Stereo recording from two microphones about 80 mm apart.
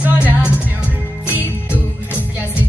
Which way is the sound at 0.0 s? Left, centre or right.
Right.